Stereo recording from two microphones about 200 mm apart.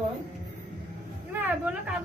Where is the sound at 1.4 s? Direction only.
5° right (ahead or behind).